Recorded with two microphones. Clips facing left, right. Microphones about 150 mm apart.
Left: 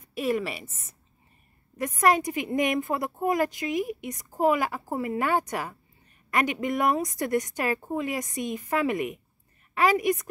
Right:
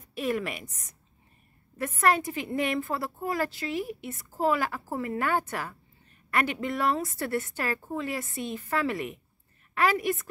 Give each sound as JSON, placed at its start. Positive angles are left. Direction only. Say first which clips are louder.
{"t": 0.0, "sound": "a woman's voice", "louder": "left 2 dB", "side_deg": 10}
{"t": 1.8, "sound": "a woman's voice", "louder": "left 2 dB", "side_deg": 10}